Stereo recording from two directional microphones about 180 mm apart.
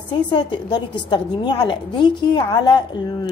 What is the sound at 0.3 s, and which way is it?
A woman's voice, 25° left (ahead or behind).